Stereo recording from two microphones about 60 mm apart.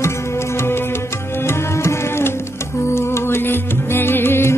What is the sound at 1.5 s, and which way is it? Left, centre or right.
Music, left.